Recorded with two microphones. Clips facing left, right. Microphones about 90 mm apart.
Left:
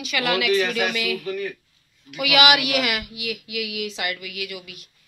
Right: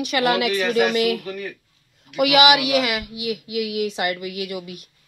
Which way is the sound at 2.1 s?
50° right (ahead or behind).